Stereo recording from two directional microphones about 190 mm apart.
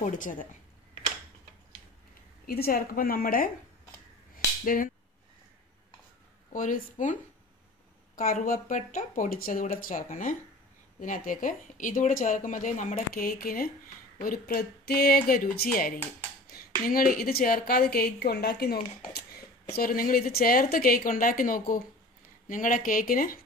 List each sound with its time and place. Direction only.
0.0 s a woman's voice: 45° left (ahead or behind)
2.4 s a woman's voice: 50° left (ahead or behind)
4.6 s a woman's voice: 45° left (ahead or behind)
6.5 s a woman's voice: 45° left (ahead or behind)
8.2 s a woman's voice: 50° left (ahead or behind)